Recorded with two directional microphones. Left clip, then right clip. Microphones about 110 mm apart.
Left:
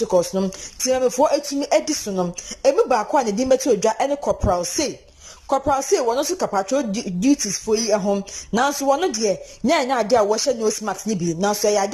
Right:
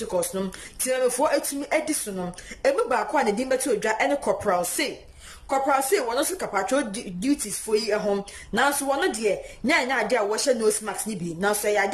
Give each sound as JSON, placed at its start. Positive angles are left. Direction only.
{"t": 0.1, "sound": "speech", "side_deg": 20}
{"t": 5.5, "sound": "speech", "side_deg": 30}